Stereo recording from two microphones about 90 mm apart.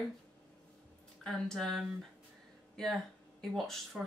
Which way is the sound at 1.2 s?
5° left (ahead or behind).